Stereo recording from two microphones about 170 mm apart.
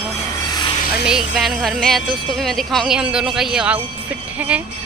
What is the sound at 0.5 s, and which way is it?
Vehicle, 25° left (ahead or behind).